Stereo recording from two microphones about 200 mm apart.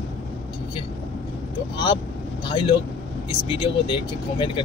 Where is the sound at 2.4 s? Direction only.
25° left (ahead or behind).